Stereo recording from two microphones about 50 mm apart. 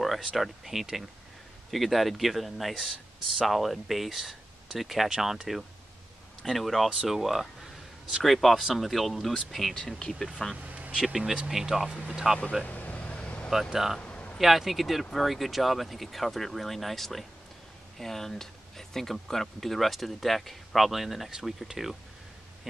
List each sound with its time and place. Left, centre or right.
0.0 s a sound: centre
0.4 s speech: centre
6.4 s speech: centre
9.8 s speech: centre
10.6 s a sound: right
11.6 s speech: centre
12.6 s vehicle: left
13.5 s speech: centre
14.0 s a sound: left
14.4 s speech: centre